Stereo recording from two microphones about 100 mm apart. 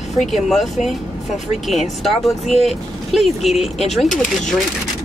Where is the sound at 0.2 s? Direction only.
Centre (ahead or behind).